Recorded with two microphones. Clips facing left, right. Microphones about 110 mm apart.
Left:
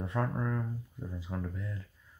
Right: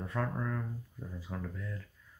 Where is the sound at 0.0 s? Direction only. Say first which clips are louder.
Left 2 dB; 15° left (ahead or behind).